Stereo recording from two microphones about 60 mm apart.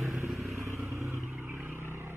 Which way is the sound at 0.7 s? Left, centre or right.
Right.